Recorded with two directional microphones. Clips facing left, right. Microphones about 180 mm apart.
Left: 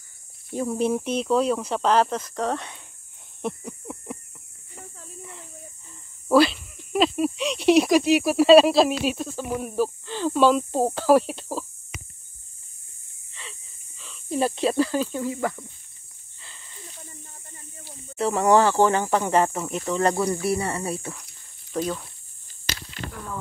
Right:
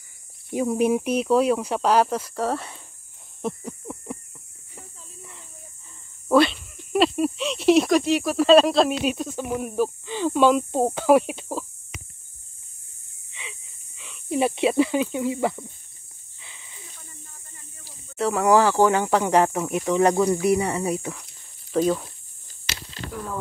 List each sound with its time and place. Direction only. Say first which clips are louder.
0.5 s speech: right 3 dB; 10° right (ahead or behind)
3.4 s snake: right 1 dB; centre (ahead or behind)
6.2 s speech: even; 5° left (ahead or behind)
10.4 s speech: even; centre (ahead or behind)
13.3 s a sound: right 2 dB; 10° right (ahead or behind)
15.2 s speech: right 3 dB; 25° right (ahead or behind)
16.3 s a sound: left 1 dB; centre (ahead or behind)
18.1 s speech: even; centre (ahead or behind)